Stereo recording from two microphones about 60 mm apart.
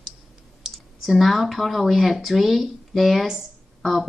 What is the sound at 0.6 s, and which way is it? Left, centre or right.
Speech, centre.